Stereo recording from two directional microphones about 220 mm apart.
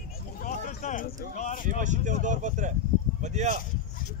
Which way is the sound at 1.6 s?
35° right (ahead or behind).